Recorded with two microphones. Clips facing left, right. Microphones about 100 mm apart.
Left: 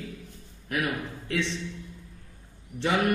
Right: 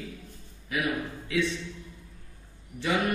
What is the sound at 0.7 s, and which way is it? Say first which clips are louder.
Speech: even; 65° left (ahead or behind).